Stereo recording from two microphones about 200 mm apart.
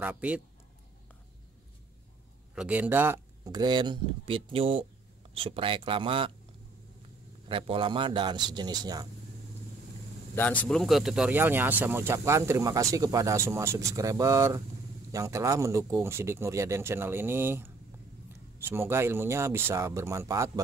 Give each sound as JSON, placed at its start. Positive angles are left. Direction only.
{"t": 0.0, "sound": "speech", "side_deg": -10}
{"t": 2.5, "sound": "speech", "side_deg": -5}
{"t": 7.4, "sound": "speech", "side_deg": -25}
{"t": 10.3, "sound": "speech", "side_deg": 10}